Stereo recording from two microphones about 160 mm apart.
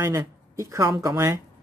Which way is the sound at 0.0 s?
20° right (ahead or behind).